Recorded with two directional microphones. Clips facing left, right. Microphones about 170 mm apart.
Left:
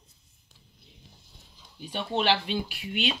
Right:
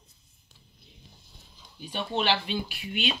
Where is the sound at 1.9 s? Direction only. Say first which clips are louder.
Left 1 dB; 70° left (ahead or behind).